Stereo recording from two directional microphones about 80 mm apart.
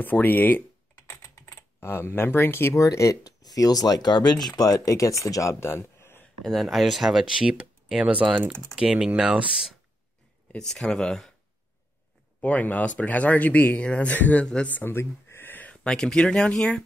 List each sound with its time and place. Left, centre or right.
0.0 s speech: left
1.0 s typing: left
2.7 s speech: left
4.6 s speech: left
6.4 s speech: centre; by 8.5 s right
8.7 s speech: centre
10.5 s speech: centre
12.4 s speech: left
15.7 s speech: centre